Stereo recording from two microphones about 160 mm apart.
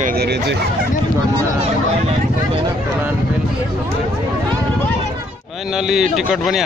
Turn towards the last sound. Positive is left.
turn(degrees=-5)  # may be behind; listen again after turning